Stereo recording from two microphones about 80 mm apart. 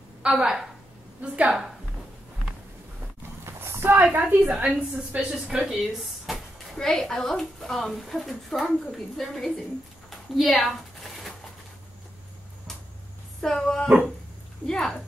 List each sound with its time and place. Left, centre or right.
0.2 s a woman's voice: centre
3.4 s a woman's voice: right; by 5.8 s centre
6.2 s speech: centre
10.0 s a sound: centre
13.4 s speech: centre